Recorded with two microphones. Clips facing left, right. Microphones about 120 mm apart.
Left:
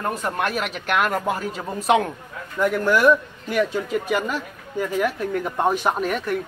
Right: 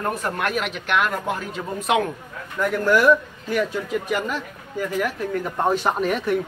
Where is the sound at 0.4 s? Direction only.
40° left (ahead or behind).